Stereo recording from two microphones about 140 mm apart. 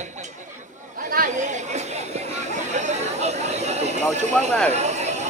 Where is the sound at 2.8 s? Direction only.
55° right (ahead or behind).